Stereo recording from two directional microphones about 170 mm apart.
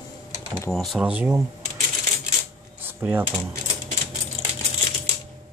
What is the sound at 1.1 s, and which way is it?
Speech, 15° right (ahead or behind).